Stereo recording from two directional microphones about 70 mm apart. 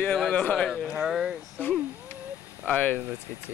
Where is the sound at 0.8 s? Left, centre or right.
Centre.